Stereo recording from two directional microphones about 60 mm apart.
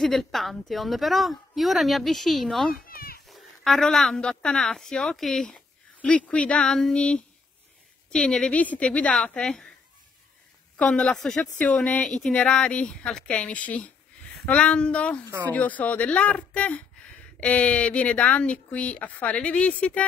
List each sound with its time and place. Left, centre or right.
0.0 s a woman's voice: centre
5.9 s speech: left
10.8 s speech: centre
11.5 s speech: left
12.0 s speech: centre